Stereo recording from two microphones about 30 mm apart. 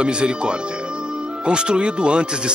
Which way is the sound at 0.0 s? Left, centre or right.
Right.